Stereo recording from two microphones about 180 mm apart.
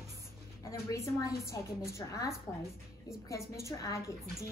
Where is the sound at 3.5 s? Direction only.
20° left (ahead or behind).